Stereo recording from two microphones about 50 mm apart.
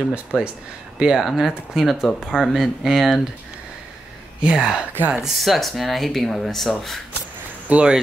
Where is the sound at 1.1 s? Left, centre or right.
Centre.